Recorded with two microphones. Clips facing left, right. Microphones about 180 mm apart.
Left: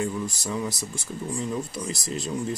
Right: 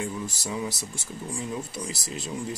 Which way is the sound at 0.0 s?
5° right (ahead or behind).